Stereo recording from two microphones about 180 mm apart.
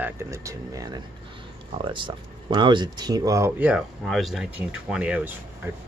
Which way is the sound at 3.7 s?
Centre (ahead or behind).